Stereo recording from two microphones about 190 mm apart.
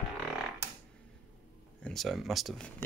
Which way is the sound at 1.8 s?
Centre (ahead or behind).